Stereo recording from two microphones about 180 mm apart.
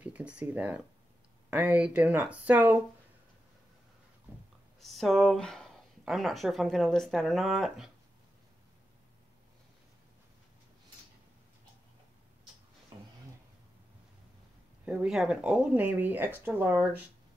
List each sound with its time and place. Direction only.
0.0 s speech: 5° right (ahead or behind)
4.7 s speech: centre (ahead or behind)
12.9 s a sound: 25° right (ahead or behind)
14.9 s speech: 5° right (ahead or behind)